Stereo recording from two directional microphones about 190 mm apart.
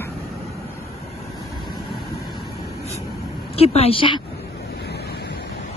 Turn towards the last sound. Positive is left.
turn(degrees=25)  # may be behind; listen again after turning